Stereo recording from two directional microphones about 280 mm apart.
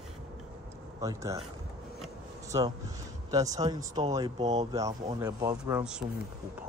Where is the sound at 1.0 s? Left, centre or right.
Centre.